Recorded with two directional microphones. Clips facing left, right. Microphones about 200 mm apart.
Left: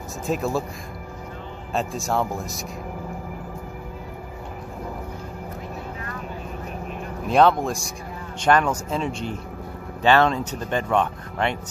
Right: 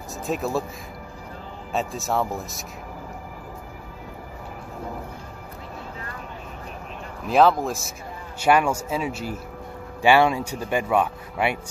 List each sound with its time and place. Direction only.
0.3 s speech: centre (ahead or behind)
1.7 s speech: centre (ahead or behind)
7.2 s speech: centre (ahead or behind)